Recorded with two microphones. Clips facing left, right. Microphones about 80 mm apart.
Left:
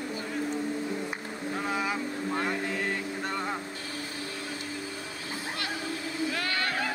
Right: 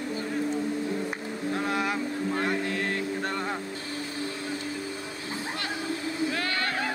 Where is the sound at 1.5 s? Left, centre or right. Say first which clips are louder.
Right 2 dB; centre.